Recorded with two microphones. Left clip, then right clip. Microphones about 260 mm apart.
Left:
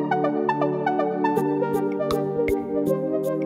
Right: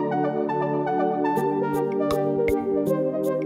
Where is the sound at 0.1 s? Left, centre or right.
Centre.